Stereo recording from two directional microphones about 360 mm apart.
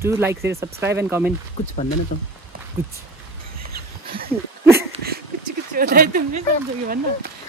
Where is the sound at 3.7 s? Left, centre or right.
Right.